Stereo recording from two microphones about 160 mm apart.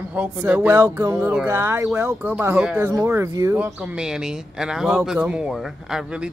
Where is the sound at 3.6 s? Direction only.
5° right (ahead or behind).